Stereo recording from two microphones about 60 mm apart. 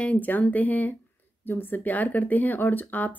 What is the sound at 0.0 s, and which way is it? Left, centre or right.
Speech, left.